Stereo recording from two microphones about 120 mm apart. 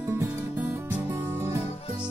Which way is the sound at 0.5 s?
15° right (ahead or behind).